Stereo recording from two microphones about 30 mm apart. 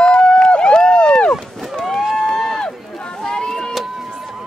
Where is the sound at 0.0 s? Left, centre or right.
Left.